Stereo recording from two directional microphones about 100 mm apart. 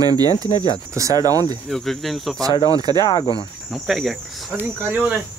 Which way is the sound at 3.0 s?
50° left (ahead or behind).